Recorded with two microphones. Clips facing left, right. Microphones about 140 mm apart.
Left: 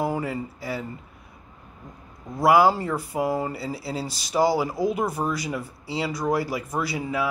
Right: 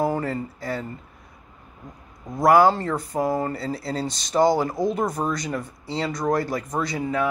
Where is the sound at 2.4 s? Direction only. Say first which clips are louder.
Right 2 dB; 5° left (ahead or behind).